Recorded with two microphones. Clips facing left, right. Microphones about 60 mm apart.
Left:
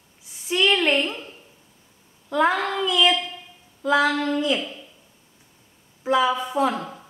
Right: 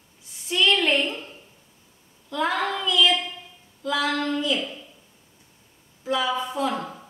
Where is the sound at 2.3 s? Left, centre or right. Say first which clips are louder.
Left 4 dB; left.